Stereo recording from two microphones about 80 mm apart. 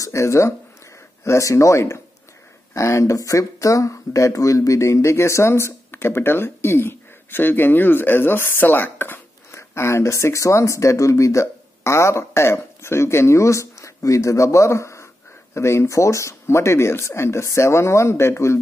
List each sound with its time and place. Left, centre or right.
0.0 s speech: left